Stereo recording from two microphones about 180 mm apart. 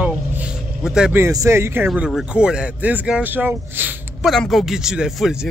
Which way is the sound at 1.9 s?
Centre (ahead or behind).